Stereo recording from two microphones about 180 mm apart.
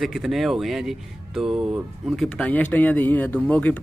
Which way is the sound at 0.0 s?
Centre (ahead or behind).